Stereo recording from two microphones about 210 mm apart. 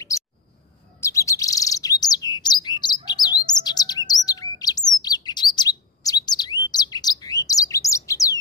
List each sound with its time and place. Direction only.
1.0 s chirp: 15° left (ahead or behind)
3.1 s bird: 20° left (ahead or behind)